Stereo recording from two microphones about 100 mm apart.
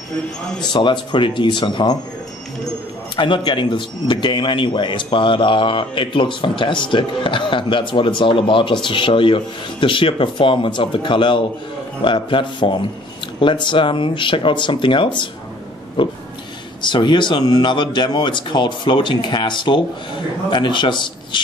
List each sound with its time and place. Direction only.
0.6 s speech: 50° left (ahead or behind)
3.2 s speech: 55° left (ahead or behind)